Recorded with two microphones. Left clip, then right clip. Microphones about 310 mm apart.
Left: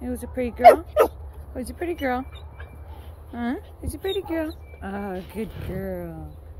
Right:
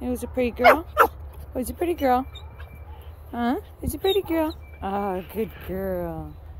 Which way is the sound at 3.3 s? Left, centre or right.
Centre.